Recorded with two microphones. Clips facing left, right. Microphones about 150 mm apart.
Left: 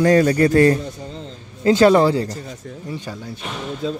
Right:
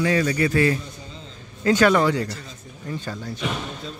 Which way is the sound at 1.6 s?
30° left (ahead or behind).